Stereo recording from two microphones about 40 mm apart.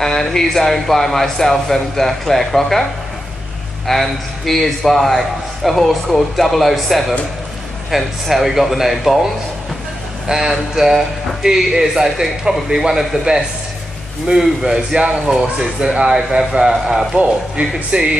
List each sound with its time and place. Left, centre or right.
0.0 s a man's voice: centre
10.2 s speech: centre
14.6 s speech: centre
17.1 s speech: right